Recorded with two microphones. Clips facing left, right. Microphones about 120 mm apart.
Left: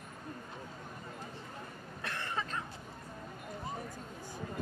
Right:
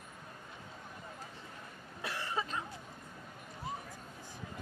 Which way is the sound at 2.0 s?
10° right (ahead or behind).